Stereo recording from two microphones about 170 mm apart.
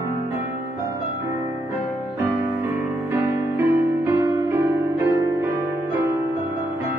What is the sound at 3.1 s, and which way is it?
Music, 15° right (ahead or behind).